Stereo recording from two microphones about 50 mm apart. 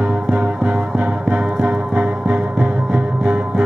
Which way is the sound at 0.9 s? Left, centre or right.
Right.